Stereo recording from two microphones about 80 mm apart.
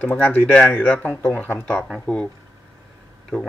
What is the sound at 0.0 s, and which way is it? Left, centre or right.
Speech, centre.